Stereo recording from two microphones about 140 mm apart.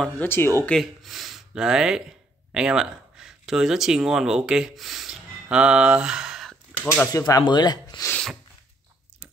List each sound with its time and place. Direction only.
0.0 s speech: 15° left (ahead or behind)
0.7 s speech: centre (ahead or behind)
7.1 s speech: 25° left (ahead or behind)
8.1 s sneeze: 5° left (ahead or behind)